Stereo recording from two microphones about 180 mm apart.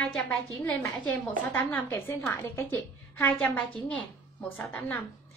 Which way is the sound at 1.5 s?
10° left (ahead or behind).